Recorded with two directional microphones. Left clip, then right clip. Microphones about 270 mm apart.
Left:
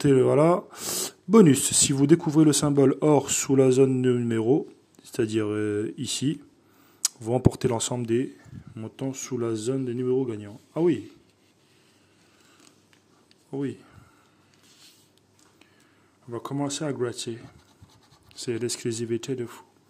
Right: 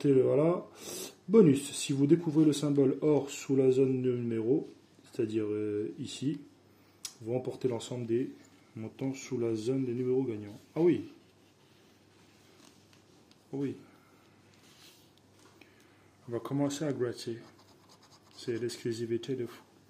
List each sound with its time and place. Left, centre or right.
0.0 s speech: left
13.5 s speech: left
16.3 s speech: centre